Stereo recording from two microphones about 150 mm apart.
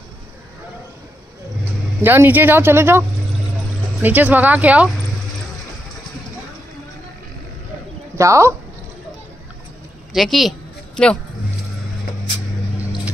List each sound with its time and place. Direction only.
1.6 s speech: 15° right (ahead or behind)
8.2 s speech: 20° right (ahead or behind)
10.1 s a woman's voice: centre (ahead or behind)